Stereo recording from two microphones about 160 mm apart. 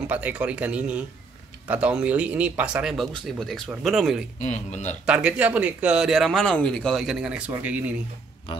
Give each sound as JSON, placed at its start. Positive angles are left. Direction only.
{"t": 0.1, "sound": "speech", "side_deg": -10}
{"t": 4.4, "sound": "a man's voice", "side_deg": 50}
{"t": 5.0, "sound": "speech", "side_deg": -5}